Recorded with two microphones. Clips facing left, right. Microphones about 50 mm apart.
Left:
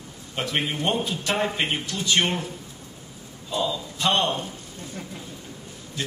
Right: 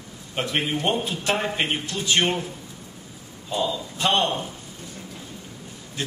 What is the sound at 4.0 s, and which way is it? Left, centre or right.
Speech, right.